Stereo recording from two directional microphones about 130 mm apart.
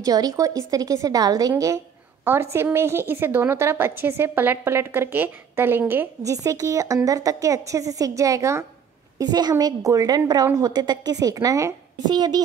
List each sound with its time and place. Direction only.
0.0 s a woman's voice: 25° right (ahead or behind)
6.3 s a woman's voice: 25° right (ahead or behind)